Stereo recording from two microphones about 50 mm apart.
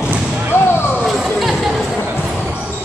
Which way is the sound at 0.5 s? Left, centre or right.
Left.